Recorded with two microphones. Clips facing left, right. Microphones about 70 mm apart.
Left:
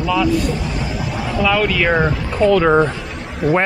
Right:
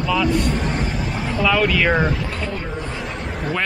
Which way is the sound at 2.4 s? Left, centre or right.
Left.